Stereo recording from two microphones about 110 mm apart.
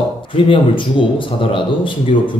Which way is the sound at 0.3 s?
50° left (ahead or behind).